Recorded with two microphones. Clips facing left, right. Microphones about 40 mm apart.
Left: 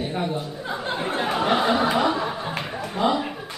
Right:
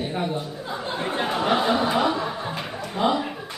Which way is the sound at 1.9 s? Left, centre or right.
Centre.